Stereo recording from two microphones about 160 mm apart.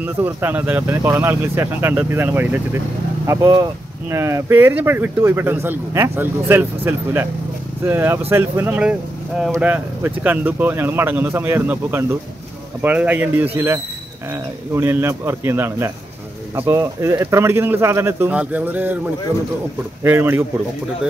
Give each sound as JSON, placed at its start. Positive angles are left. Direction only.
{"t": 0.0, "sound": "speech", "side_deg": -10}
{"t": 20.0, "sound": "speech", "side_deg": -15}